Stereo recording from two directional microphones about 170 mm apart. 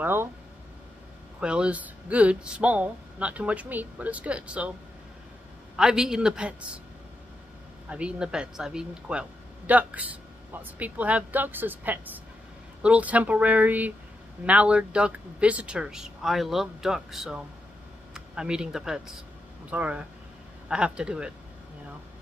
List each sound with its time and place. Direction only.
0.0 s speech: 15° right (ahead or behind)
1.4 s speech: 5° right (ahead or behind)
5.8 s speech: 5° right (ahead or behind)
7.9 s speech: 5° right (ahead or behind)